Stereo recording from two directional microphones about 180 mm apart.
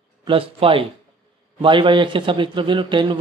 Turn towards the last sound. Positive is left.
turn(degrees=-25)  # may be behind; listen again after turning